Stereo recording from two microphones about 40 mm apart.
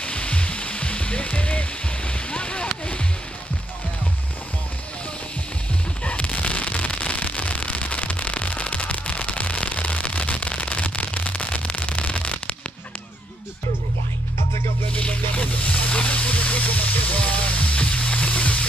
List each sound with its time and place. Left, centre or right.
0.0 s music: left
6.0 s fireworks: left
14.9 s a sound: left
17.3 s music: left